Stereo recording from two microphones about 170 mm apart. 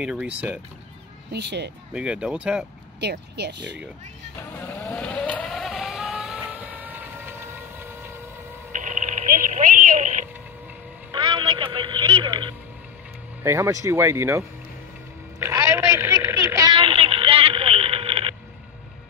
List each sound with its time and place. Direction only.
0.0 s speech: 5° right (ahead or behind)
1.3 s speech: 85° right
2.0 s speech: 5° right (ahead or behind)
3.0 s speech: 75° right (ahead or behind)
4.6 s vehicle: 10° left (ahead or behind); by 8.1 s 15° right (ahead or behind)
8.7 s a sound: 50° right (ahead or behind)
11.1 s music: 30° right (ahead or behind)
13.4 s speech: 15° right (ahead or behind)
15.3 s a sound: 15° right (ahead or behind); by 18.3 s 35° right (ahead or behind)